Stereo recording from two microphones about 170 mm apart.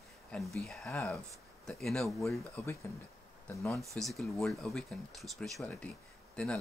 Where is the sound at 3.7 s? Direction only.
Centre (ahead or behind).